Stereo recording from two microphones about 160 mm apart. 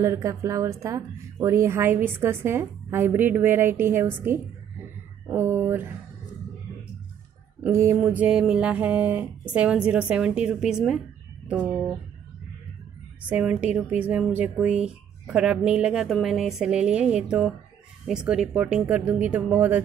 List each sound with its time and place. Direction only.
0.0 s speech: 20° right (ahead or behind)
7.6 s speech: 15° right (ahead or behind)
13.3 s speech: 10° right (ahead or behind)